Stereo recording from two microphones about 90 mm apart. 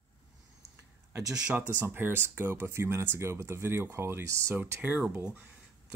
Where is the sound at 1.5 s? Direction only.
20° right (ahead or behind).